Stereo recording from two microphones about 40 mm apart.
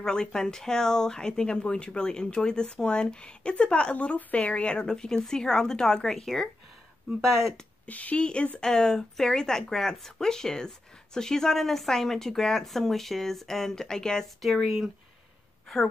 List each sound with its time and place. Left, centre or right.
0.0 s a woman's voice: centre
4.8 s speech: centre
7.8 s a woman's voice: left
8.5 s speech: centre
14.6 s speech: centre